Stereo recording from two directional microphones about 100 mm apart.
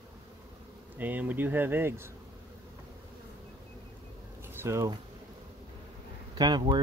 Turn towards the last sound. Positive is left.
turn(degrees=-45)  # may be behind; listen again after turning